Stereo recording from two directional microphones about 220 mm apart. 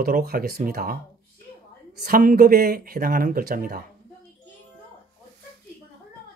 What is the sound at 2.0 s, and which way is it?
Speech, 40° right (ahead or behind).